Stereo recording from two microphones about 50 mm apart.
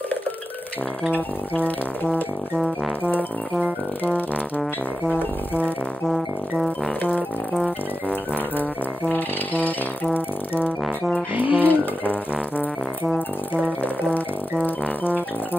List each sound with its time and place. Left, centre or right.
1.1 s music: left
5.1 s music: left
7.0 s music: left
9.1 s music: left
11.3 s speech: right
11.7 s music: left